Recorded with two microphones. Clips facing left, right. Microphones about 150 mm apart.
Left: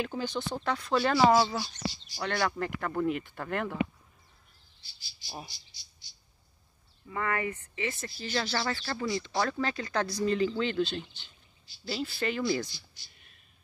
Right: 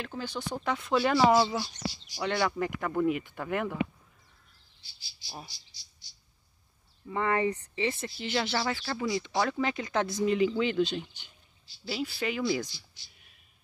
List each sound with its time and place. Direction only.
0.0 s speech: centre (ahead or behind); by 0.9 s 20° right (ahead or behind)
0.9 s speech: centre (ahead or behind)
2.0 s speech: 15° right (ahead or behind)
7.1 s speech: 25° right (ahead or behind)
13.1 s a sound: 5° right (ahead or behind)